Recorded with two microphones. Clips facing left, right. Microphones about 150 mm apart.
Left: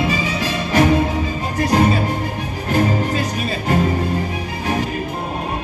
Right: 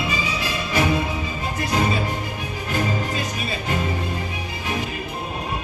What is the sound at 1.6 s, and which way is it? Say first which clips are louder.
Music: left 7 dB; 45° left (ahead or behind).